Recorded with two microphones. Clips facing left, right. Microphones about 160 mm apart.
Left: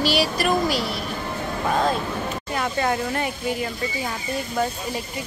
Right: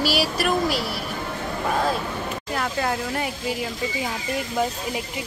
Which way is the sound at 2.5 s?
Centre (ahead or behind).